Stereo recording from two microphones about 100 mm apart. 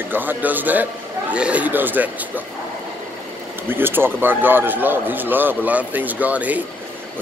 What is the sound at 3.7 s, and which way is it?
Speech, 20° right (ahead or behind).